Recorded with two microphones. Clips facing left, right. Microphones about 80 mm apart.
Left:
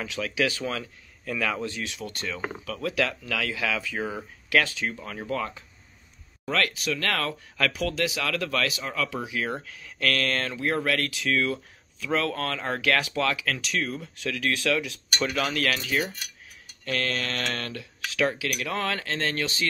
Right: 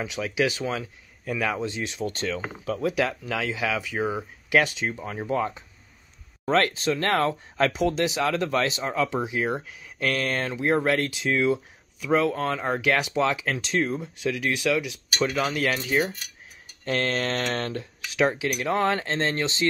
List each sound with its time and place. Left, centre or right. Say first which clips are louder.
0.0 s speech: right 2 dB; centre; by 2.4 s right
2.8 s speech: right 1 dB; centre